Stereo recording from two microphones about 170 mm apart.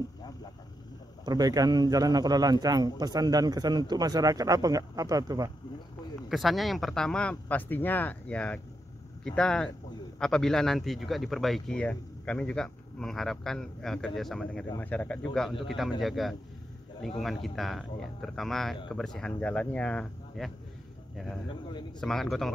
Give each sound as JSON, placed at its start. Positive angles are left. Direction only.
{"t": 1.2, "sound": "a man's voice", "side_deg": -20}
{"t": 6.2, "sound": "speech", "side_deg": 0}
{"t": 21.5, "sound": "a man's voice", "side_deg": 25}
{"t": 22.0, "sound": "speech", "side_deg": 0}